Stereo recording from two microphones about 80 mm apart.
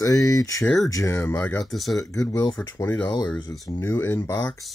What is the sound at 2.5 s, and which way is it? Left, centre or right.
Speech, left.